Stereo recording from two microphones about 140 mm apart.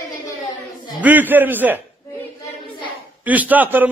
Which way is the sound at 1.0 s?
15° right (ahead or behind).